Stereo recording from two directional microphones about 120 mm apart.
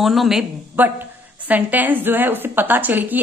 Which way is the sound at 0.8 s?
15° right (ahead or behind).